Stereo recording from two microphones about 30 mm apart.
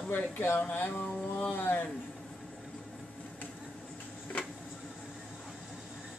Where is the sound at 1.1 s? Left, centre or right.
Left.